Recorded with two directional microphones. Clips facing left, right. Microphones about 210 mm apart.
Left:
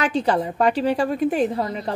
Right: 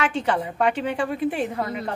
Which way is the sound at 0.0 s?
35° left (ahead or behind).